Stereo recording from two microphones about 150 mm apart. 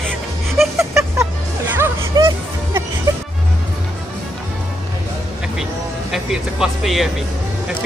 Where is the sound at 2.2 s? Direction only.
25° right (ahead or behind).